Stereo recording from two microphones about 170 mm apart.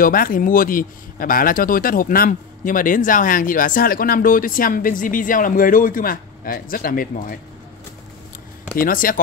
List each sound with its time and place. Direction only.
0.0 s speech: 55° left (ahead or behind)
8.7 s speech: 55° left (ahead or behind)